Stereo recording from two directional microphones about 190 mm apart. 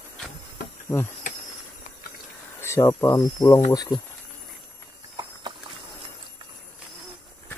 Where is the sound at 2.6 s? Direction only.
15° left (ahead or behind).